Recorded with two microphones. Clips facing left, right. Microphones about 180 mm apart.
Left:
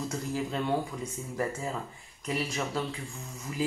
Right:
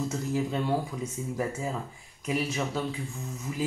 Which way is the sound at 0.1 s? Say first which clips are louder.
Right 3 dB; 5° right (ahead or behind).